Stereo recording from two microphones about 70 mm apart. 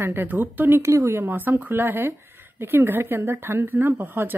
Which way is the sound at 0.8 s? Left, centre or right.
Right.